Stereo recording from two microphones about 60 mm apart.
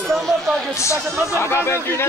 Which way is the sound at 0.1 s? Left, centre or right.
Centre.